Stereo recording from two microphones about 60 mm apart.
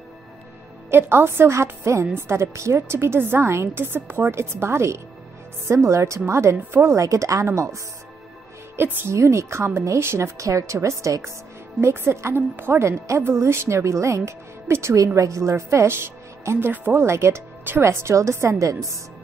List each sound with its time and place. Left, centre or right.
0.8 s a woman's voice: right
7.0 s speech: right
8.7 s a woman's voice: right
9.1 s a woman's voice: right
11.8 s a woman's voice: right
17.0 s a woman's voice: right